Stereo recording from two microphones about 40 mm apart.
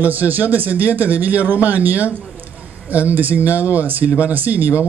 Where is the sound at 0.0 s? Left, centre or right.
Right.